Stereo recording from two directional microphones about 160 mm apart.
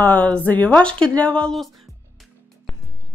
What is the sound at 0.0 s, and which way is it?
Speech, 10° left (ahead or behind).